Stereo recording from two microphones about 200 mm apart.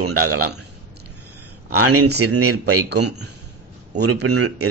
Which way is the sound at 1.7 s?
90° right.